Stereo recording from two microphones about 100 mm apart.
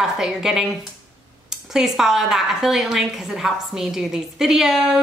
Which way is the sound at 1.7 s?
5° right (ahead or behind).